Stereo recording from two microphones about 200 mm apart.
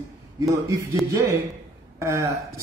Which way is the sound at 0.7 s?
15° right (ahead or behind).